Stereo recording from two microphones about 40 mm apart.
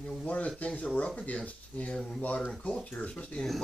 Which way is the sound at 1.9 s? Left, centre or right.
Centre.